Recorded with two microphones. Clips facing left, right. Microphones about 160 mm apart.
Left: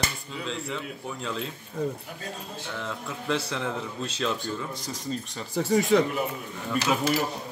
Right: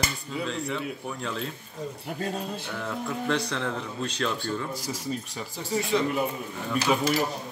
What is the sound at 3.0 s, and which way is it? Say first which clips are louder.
Speech: right 1 dB; centre (ahead or behind).